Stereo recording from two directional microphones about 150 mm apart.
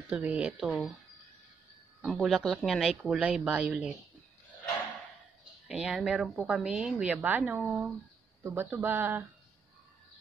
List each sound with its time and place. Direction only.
0.1 s speech: 10° right (ahead or behind)
2.0 s speech: centre (ahead or behind)
5.7 s speech: 5° right (ahead or behind)